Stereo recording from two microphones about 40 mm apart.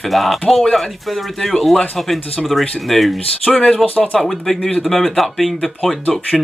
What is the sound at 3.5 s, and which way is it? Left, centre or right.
Speech, left.